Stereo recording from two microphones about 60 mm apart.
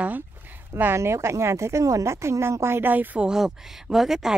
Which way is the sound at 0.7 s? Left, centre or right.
Right.